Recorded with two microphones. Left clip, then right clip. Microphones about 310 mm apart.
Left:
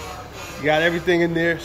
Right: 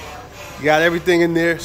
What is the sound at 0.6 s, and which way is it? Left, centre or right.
Speech, centre.